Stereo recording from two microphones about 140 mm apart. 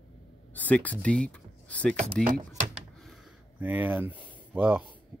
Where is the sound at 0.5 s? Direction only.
10° left (ahead or behind).